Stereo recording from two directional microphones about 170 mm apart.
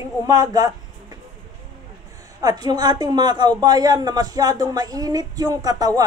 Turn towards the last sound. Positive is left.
turn(degrees=-20)  # may be behind; listen again after turning